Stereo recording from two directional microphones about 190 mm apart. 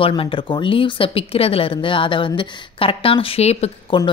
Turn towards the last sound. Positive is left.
turn(degrees=25)  # may be behind; listen again after turning